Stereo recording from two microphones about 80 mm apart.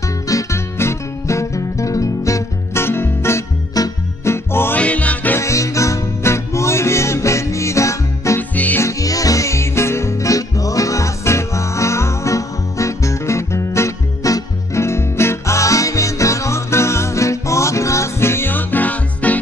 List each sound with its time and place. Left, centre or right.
0.3 s music: left
3.8 s music: left
4.2 s music: left
4.7 s music: centre
5.4 s music: left
8.4 s music: left
8.8 s music: left; by 19.4 s centre